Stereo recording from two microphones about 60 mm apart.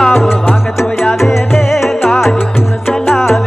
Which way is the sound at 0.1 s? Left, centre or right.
Centre.